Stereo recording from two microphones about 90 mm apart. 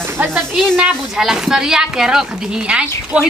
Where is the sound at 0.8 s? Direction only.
5° right (ahead or behind).